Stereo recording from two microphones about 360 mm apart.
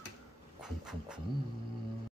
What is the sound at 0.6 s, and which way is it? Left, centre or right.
Music, centre.